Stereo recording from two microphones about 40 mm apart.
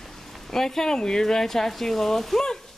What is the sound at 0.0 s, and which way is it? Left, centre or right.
A woman's voice, centre.